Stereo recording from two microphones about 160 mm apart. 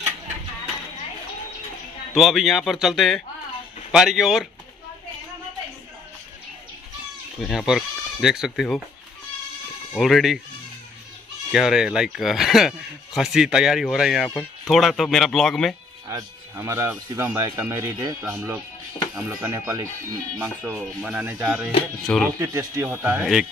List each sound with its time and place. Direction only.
2.1 s speech: centre (ahead or behind)
7.3 s speech: centre (ahead or behind)
9.9 s speech: centre (ahead or behind)
11.5 s speech: 5° right (ahead or behind)
16.1 s speech: 20° right (ahead or behind); by 22.3 s 5° left (ahead or behind)
22.4 s speech: 20° right (ahead or behind)